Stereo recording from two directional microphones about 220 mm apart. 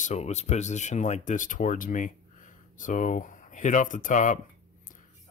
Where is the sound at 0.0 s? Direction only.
30° left (ahead or behind).